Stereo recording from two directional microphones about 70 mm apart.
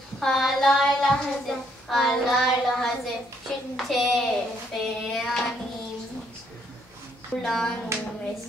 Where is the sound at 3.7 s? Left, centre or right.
Centre.